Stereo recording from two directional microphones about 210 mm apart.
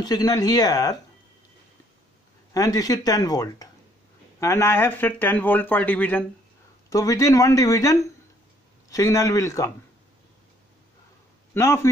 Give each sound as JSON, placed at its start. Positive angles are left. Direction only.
{"t": 0.0, "sound": "speech", "side_deg": 20}
{"t": 2.5, "sound": "speech", "side_deg": 15}
{"t": 11.5, "sound": "speech", "side_deg": 15}